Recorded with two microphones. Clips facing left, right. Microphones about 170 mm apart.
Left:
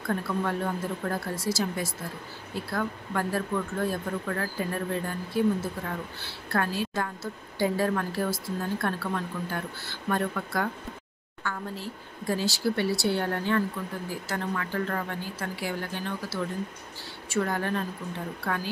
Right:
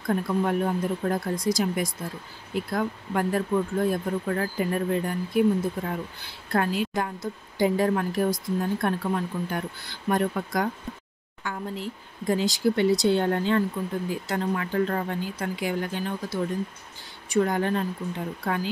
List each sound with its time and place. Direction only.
0.1 s speech: 20° right (ahead or behind)